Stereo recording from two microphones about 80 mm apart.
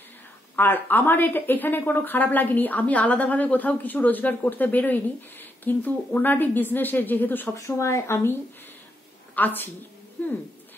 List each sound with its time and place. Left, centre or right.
0.6 s a woman's voice: left
7.5 s a woman's voice: left